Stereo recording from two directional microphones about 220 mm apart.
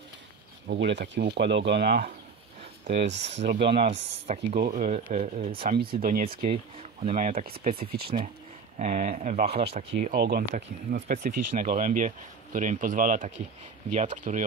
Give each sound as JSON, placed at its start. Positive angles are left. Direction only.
{"t": 0.7, "sound": "speech", "side_deg": -50}
{"t": 3.6, "sound": "speech", "side_deg": -25}
{"t": 5.7, "sound": "speech", "side_deg": -40}
{"t": 6.5, "sound": "speech", "side_deg": -30}
{"t": 7.4, "sound": "speech", "side_deg": -45}
{"t": 10.1, "sound": "speech", "side_deg": -45}